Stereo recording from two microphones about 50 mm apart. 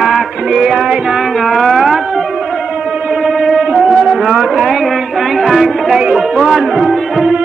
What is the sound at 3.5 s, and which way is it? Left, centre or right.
Music, centre.